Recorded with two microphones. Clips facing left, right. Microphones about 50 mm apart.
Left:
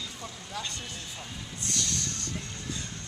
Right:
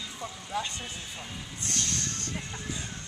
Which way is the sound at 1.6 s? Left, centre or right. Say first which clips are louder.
Even; right.